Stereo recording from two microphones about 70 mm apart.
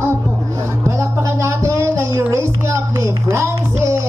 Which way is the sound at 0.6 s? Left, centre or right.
Right.